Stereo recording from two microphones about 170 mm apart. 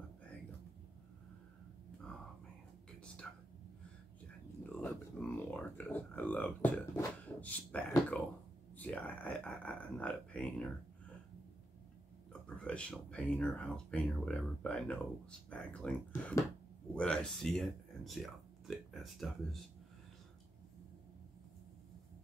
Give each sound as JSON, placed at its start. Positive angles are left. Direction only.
{"t": 4.7, "sound": "speech", "side_deg": 10}
{"t": 12.3, "sound": "speech", "side_deg": 5}
{"t": 16.1, "sound": "speech", "side_deg": 15}
{"t": 16.9, "sound": "speech", "side_deg": 5}